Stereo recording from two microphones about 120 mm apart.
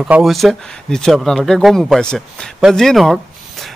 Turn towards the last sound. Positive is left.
turn(degrees=5)  # may be behind; listen again after turning